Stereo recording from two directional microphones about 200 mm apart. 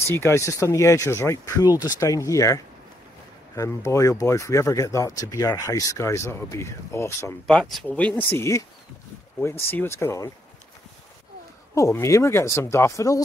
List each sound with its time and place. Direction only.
0.1 s speech: 10° left (ahead or behind)
11.7 s speech: 15° left (ahead or behind)